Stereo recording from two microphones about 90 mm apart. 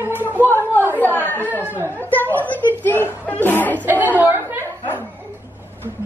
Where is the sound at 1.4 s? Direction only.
20° right (ahead or behind).